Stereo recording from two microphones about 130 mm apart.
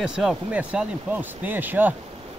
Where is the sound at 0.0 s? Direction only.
5° right (ahead or behind).